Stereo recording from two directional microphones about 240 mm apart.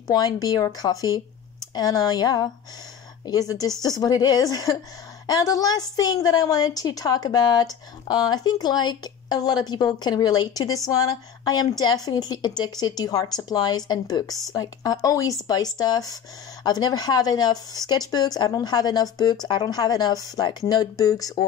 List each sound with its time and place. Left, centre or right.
0.0 s a woman's voice: centre